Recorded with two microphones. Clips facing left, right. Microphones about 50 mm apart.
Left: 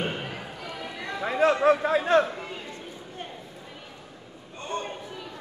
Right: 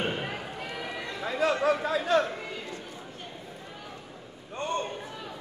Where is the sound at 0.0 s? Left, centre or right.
Centre.